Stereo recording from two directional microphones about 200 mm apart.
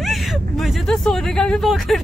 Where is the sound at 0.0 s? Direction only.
Centre (ahead or behind).